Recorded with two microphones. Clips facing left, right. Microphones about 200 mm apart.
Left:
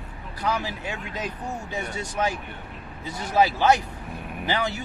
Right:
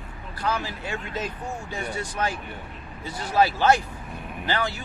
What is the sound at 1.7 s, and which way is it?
Speech, 20° left (ahead or behind).